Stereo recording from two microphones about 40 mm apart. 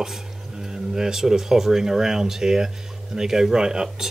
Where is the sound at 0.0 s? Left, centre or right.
Centre.